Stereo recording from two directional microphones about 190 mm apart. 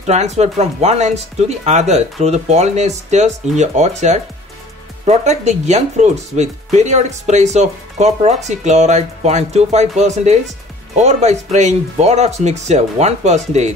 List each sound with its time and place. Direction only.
0.0 s speech: 35° right (ahead or behind)